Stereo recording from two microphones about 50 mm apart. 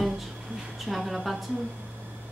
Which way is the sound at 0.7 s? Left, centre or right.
Centre.